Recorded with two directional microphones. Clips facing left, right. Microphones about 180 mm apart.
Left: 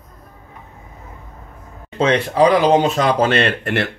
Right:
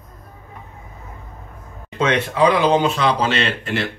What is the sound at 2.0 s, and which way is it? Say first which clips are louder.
Speech: left 3 dB; 35° left (ahead or behind).